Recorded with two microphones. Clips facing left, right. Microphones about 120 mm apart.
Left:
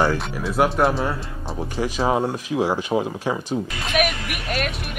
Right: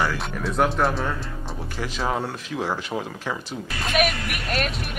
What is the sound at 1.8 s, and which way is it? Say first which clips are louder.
Speech: left 5 dB; 20° left (ahead or behind).